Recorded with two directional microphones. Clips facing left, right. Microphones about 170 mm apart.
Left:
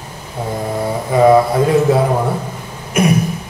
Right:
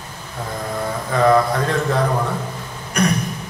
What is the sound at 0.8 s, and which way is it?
Speech, 20° left (ahead or behind).